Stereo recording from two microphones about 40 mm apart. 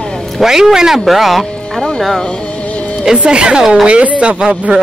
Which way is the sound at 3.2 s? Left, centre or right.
Right.